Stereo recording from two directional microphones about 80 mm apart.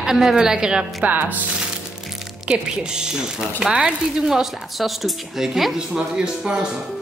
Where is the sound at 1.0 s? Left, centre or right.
Right.